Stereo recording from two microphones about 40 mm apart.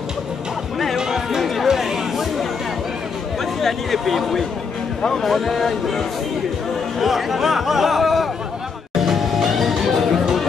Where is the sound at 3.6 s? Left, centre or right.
Centre.